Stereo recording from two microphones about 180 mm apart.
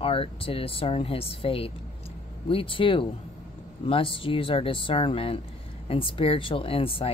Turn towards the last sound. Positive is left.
turn(degrees=30)  # may be behind; listen again after turning